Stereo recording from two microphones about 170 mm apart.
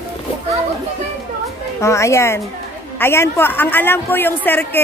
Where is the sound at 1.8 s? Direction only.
15° left (ahead or behind).